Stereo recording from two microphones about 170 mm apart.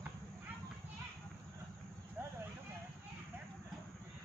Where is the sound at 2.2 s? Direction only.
10° right (ahead or behind).